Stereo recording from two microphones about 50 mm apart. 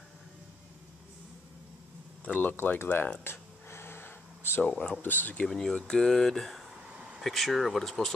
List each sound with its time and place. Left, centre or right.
2.2 s speech: left
2.5 s speech: left
3.3 s a sound: left
4.6 s speech: left
5.0 s speech: left
5.5 s speech: centre
6.9 s vehicle: centre
7.2 s speech: centre